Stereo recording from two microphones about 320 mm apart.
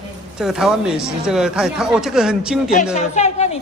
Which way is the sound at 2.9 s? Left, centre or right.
Left.